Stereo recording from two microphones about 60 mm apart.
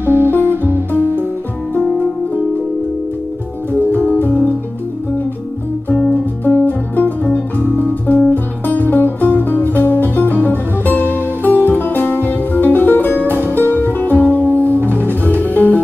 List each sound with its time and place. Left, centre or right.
0.0 s music: right
3.9 s music: left
6.4 s music: left